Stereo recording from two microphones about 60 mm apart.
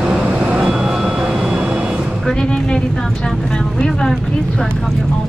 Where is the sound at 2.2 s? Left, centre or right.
Centre.